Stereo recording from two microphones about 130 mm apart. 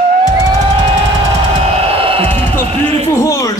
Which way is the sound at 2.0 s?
45° right (ahead or behind).